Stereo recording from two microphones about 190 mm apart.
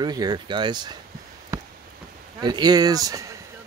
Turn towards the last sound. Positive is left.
turn(degrees=-20)  # may be behind; listen again after turning